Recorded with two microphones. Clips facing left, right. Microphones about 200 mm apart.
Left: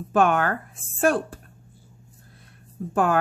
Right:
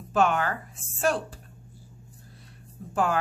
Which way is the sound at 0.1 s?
55° left (ahead or behind).